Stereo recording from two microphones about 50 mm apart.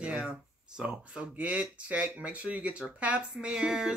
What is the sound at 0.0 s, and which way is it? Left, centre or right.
Speech, right.